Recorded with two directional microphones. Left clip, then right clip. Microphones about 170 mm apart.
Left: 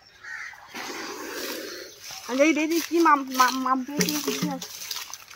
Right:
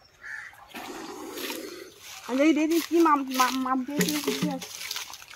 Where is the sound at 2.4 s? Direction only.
45° right (ahead or behind).